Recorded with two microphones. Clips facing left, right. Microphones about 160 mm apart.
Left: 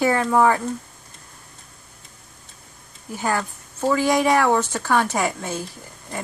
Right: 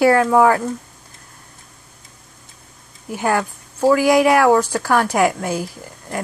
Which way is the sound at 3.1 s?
15° right (ahead or behind).